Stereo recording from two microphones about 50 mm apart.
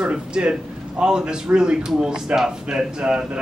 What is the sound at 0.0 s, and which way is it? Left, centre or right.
A man's voice, right.